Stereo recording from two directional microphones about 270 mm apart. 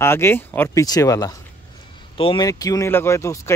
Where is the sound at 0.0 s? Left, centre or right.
Centre.